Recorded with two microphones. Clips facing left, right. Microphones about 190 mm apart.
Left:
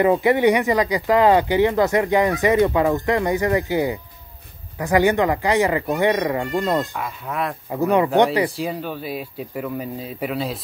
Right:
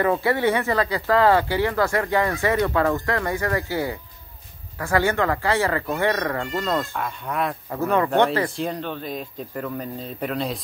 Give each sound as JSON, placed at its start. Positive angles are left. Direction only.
{"t": 0.0, "sound": "speech", "side_deg": 20}
{"t": 7.0, "sound": "speech", "side_deg": 0}
{"t": 8.5, "sound": "speech", "side_deg": 5}